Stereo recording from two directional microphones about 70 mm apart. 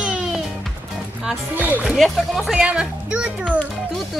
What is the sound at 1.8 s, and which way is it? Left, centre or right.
Speech, centre.